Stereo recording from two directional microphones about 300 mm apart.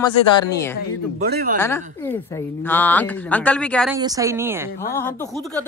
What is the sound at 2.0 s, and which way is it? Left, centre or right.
Speech, centre.